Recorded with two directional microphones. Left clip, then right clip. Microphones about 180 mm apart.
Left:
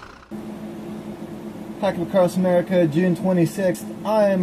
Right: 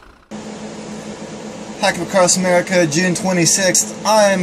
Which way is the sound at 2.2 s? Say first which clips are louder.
Right 4 dB; 15° right (ahead or behind).